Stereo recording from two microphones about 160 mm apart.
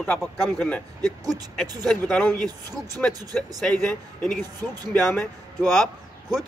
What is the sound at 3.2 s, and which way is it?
Speech, 25° right (ahead or behind).